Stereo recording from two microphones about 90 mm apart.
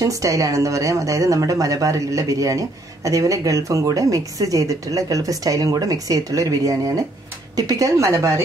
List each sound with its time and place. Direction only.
0.0 s speech: 40° right (ahead or behind)